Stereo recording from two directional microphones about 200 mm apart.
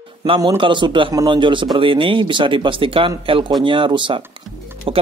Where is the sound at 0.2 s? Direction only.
20° right (ahead or behind).